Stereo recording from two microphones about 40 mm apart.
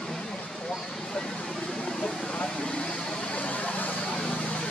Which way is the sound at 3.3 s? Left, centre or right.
Left.